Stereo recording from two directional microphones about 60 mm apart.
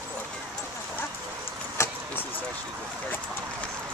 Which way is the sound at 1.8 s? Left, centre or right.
Left.